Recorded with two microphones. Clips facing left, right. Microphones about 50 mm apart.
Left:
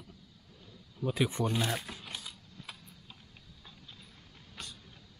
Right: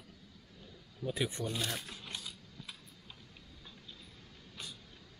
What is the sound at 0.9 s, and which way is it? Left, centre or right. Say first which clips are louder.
Speech: left 5 dB; centre.